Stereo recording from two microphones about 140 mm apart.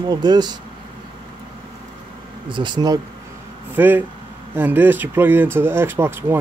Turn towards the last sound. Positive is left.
turn(degrees=-15)  # may be behind; listen again after turning